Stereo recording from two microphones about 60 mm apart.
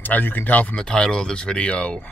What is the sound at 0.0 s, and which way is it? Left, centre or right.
Speech, left.